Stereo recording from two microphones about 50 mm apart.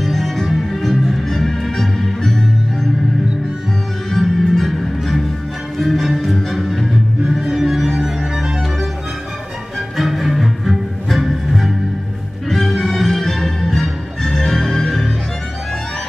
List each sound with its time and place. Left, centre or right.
0.0 s music: centre
4.1 s music: centre
9.9 s music: centre